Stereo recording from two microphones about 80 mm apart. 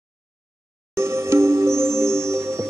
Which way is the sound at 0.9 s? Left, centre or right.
Right.